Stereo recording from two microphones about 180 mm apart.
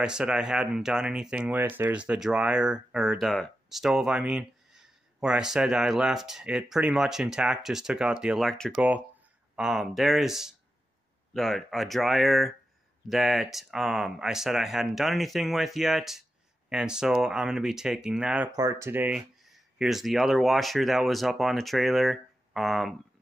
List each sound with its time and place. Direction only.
0.0 s speech: 5° right (ahead or behind)
18.5 s speech: 20° right (ahead or behind); by 22.9 s centre (ahead or behind)